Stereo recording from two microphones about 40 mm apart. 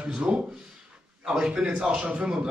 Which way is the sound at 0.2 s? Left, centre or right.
Right.